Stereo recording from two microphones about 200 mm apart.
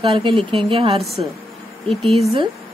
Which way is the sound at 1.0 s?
Centre (ahead or behind).